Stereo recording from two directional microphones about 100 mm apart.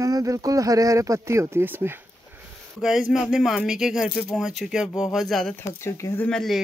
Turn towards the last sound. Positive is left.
turn(degrees=5)  # may be behind; listen again after turning